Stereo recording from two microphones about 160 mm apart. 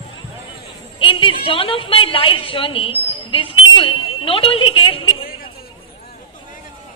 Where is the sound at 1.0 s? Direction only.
30° left (ahead or behind).